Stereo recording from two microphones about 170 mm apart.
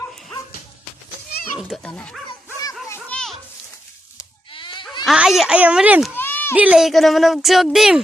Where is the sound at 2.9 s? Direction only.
5° left (ahead or behind).